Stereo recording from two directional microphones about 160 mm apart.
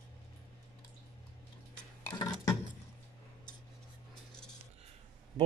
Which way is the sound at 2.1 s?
20° left (ahead or behind).